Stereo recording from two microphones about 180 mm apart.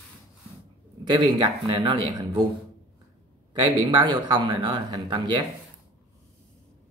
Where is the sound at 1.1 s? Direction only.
20° right (ahead or behind).